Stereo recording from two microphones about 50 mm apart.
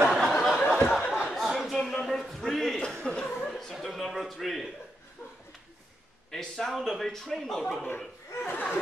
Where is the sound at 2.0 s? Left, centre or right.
Centre.